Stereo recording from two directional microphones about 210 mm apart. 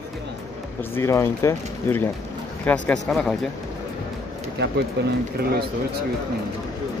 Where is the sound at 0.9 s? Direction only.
10° left (ahead or behind).